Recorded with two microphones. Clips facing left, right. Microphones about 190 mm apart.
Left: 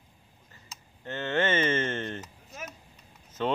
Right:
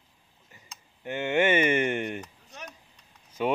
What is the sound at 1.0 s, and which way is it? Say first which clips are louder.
Speech: right 3 dB; 15° right (ahead or behind).